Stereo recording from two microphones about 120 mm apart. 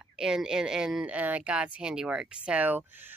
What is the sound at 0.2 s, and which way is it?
Speech, 5° right (ahead or behind).